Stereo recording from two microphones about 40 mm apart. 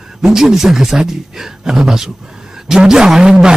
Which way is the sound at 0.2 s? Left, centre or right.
Centre.